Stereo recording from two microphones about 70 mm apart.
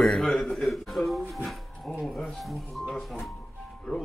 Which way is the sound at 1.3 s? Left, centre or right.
Centre.